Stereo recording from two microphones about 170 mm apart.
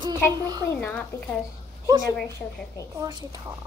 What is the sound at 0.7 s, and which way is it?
Speech, 10° left (ahead or behind).